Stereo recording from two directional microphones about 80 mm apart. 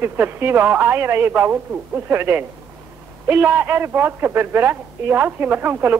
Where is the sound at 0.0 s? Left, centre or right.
Right.